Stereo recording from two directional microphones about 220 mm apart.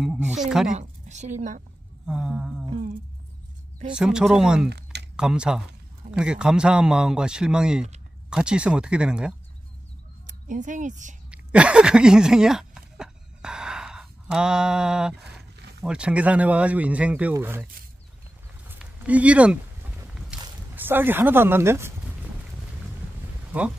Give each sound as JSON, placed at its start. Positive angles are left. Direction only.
{"t": 0.0, "sound": "speech", "side_deg": 0}
{"t": 0.7, "sound": "a woman's voice", "side_deg": -30}
{"t": 2.0, "sound": "speech", "side_deg": -5}
{"t": 3.9, "sound": "speech", "side_deg": -5}
{"t": 4.6, "sound": "a sound", "side_deg": -50}
{"t": 5.1, "sound": "speech", "side_deg": -5}
{"t": 10.2, "sound": "speech", "side_deg": -35}
{"t": 11.2, "sound": "a sound", "side_deg": -5}
{"t": 15.8, "sound": "speech", "side_deg": -5}
{"t": 18.7, "sound": "a sound", "side_deg": -5}
{"t": 20.7, "sound": "speech", "side_deg": -10}